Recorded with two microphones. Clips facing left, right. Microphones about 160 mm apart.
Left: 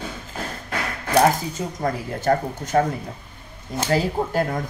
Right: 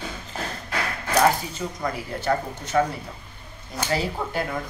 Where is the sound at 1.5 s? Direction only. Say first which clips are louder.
Left 3 dB; 45° left (ahead or behind).